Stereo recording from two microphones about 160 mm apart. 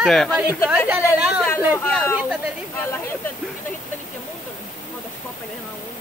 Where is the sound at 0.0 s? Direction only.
5° left (ahead or behind).